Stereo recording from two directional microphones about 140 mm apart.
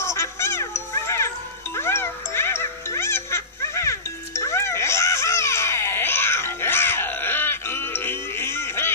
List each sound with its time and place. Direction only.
0.0 s music: 20° left (ahead or behind)